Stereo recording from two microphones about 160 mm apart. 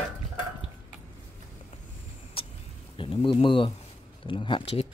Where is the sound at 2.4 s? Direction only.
35° left (ahead or behind).